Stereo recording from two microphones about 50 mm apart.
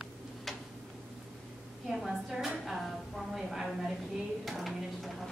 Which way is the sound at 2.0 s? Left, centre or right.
Centre.